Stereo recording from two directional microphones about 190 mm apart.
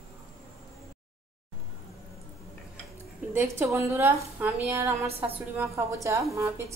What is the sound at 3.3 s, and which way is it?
A woman's voice, 10° right (ahead or behind).